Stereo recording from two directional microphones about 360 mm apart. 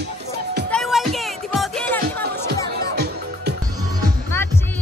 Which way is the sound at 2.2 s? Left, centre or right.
Right.